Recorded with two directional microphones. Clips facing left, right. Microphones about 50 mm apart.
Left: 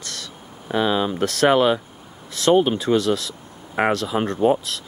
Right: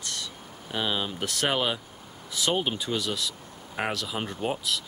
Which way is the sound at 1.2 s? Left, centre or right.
Left.